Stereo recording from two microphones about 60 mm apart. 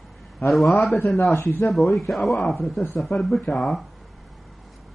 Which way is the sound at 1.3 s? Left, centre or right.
Left.